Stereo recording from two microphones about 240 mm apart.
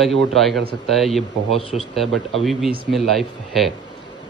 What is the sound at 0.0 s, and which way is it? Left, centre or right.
Speech, centre.